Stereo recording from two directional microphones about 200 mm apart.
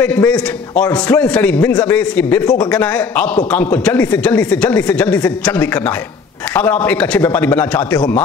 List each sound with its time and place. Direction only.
0.0 s speech: 10° left (ahead or behind)
2.4 s speech: 20° left (ahead or behind)
2.7 s speech: 10° left (ahead or behind)